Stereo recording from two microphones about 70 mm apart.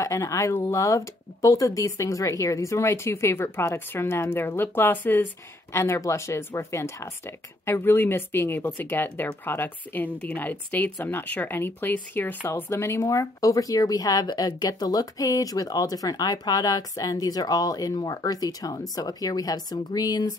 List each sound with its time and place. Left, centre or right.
0.0 s a woman's voice: left